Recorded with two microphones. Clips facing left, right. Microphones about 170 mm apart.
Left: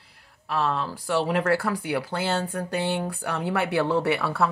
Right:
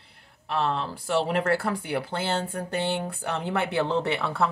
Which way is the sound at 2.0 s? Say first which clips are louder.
Left 2 dB; 25° right (ahead or behind).